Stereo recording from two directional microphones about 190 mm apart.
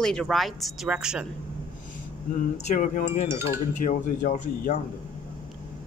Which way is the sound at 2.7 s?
40° left (ahead or behind).